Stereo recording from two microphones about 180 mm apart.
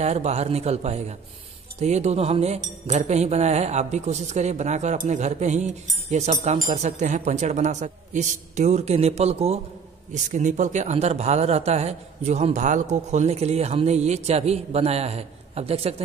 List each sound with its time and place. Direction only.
0.0 s speech: 35° right (ahead or behind)